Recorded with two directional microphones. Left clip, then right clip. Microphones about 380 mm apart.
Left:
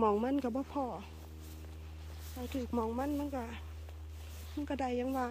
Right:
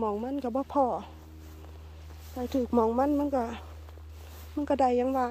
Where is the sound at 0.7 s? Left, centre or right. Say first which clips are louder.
Right 12 dB; centre.